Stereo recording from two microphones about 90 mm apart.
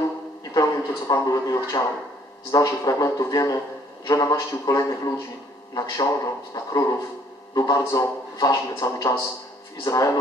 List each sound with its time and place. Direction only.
0.6 s a man's voice: 40° left (ahead or behind)